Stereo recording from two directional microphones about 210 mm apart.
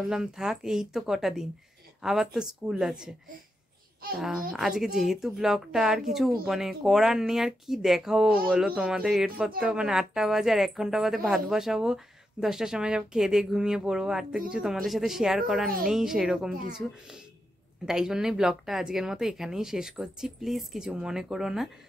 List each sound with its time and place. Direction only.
0.1 s a woman's voice: 5° right (ahead or behind)
4.1 s a woman's voice: 5° right (ahead or behind)
17.8 s a woman's voice: 5° right (ahead or behind)